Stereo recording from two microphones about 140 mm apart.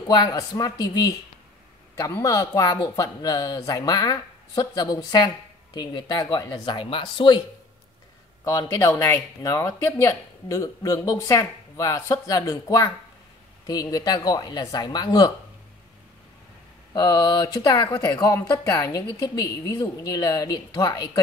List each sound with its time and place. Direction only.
0.1 s speech: 30° left (ahead or behind)
8.5 s speech: 20° left (ahead or behind)
16.9 s speech: 30° left (ahead or behind)